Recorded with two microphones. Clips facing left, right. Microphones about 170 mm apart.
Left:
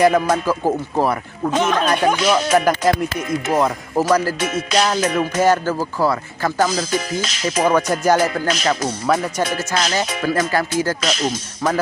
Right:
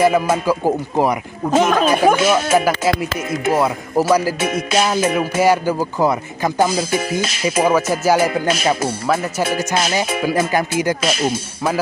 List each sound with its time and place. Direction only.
0.0 s music: 5° right (ahead or behind)
1.5 s speech: 45° right (ahead or behind)
2.2 s music: 5° right (ahead or behind)